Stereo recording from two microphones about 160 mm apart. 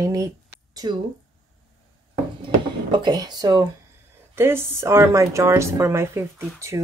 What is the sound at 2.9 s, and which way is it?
Speech, 25° right (ahead or behind).